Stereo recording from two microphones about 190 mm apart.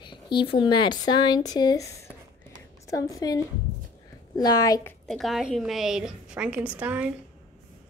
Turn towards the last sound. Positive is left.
turn(degrees=-5)  # may be behind; listen again after turning